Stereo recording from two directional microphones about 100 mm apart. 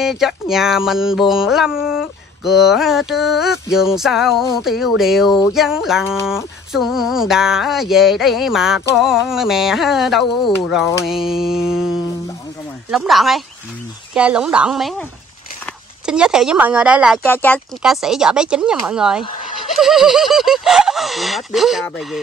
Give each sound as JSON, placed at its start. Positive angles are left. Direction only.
{"t": 0.0, "sound": "a sound", "side_deg": -5}
{"t": 14.1, "sound": "speech", "side_deg": -10}
{"t": 16.1, "sound": "speech", "side_deg": -5}
{"t": 17.2, "sound": "speech", "side_deg": 20}
{"t": 17.8, "sound": "speech", "side_deg": -5}
{"t": 19.8, "sound": "a sound", "side_deg": -5}